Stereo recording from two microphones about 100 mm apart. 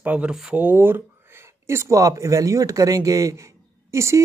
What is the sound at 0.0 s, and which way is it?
Speech, 15° right (ahead or behind).